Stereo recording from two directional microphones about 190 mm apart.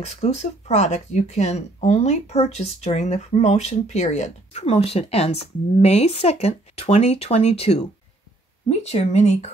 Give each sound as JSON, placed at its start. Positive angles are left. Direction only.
{"t": 0.0, "sound": "speech", "side_deg": 35}